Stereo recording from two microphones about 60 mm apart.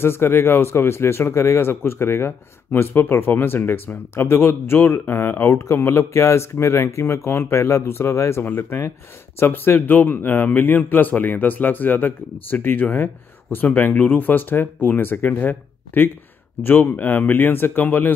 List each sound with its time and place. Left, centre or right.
0.0 s speech: left
8.5 s speech: left